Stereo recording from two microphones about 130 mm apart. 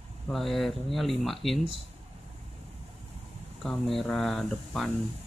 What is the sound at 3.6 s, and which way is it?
Speech, centre (ahead or behind).